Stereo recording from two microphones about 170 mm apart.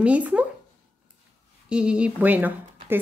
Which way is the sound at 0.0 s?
10° right (ahead or behind).